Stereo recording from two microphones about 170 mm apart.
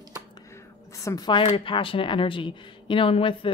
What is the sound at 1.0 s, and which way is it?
Speech, 20° left (ahead or behind).